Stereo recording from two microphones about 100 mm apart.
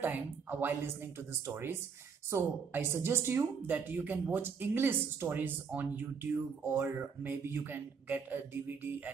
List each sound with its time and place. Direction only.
0.0 s speech: 20° right (ahead or behind)